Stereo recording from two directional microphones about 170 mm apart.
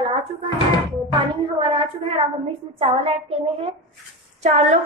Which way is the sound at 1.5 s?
35° right (ahead or behind).